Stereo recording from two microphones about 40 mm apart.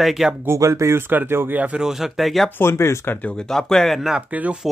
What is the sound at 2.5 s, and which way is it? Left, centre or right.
Speech, left.